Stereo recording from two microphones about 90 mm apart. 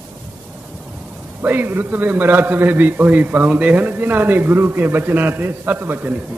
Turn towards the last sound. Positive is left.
turn(degrees=-20)  # may be behind; listen again after turning